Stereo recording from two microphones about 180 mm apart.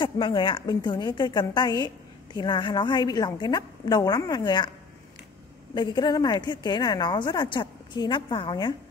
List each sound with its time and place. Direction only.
0.0 s a woman's voice: 25° left (ahead or behind)
5.8 s a woman's voice: 25° left (ahead or behind)